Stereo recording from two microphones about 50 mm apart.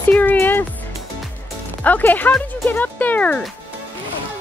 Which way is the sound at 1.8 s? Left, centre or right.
Left.